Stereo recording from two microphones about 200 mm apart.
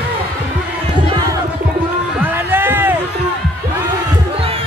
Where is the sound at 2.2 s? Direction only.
10° right (ahead or behind).